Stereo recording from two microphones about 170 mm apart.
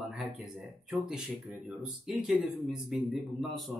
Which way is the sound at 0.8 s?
Centre (ahead or behind).